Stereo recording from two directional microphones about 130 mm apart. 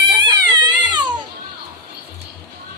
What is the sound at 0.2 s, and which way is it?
Music, 35° right (ahead or behind).